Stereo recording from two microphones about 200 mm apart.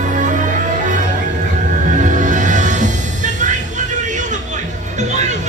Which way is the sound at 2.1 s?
40° right (ahead or behind).